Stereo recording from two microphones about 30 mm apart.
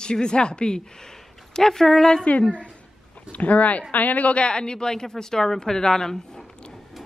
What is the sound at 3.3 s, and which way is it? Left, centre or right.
Speech, left.